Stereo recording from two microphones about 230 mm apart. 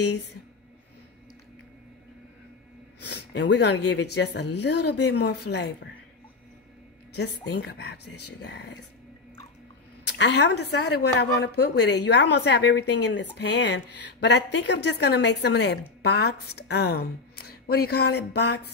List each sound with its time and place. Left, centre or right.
3.1 s a woman's voice: left
7.2 s a woman's voice: left
10.0 s a woman's voice: left